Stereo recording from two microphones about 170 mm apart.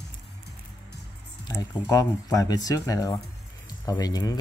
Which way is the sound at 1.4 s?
20° left (ahead or behind).